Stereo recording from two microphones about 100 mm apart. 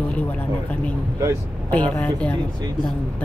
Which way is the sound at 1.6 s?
15° left (ahead or behind).